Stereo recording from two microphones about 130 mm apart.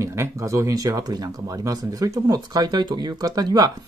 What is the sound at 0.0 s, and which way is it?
Speech, 25° right (ahead or behind).